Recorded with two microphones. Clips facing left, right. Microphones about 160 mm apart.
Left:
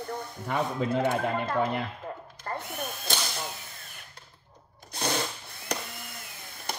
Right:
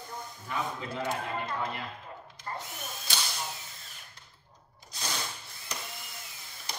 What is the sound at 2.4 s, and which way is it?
Drill, 60° left (ahead or behind).